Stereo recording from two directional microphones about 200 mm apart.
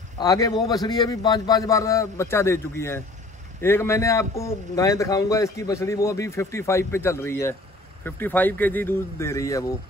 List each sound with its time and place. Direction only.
0.2 s a man's voice: 20° left (ahead or behind)